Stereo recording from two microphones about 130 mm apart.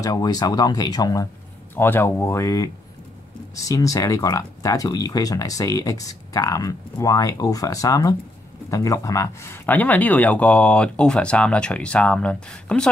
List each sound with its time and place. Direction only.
0.0 s speech: 30° left (ahead or behind)
1.8 s speech: 15° left (ahead or behind)